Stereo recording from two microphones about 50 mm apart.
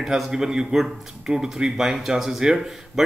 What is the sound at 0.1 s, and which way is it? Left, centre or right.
A man's voice, centre.